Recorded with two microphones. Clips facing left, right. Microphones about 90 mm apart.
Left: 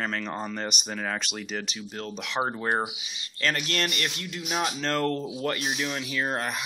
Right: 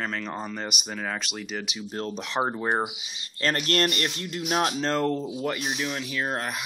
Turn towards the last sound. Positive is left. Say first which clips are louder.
# even
turn(degrees=-5)  # may be behind; listen again after turning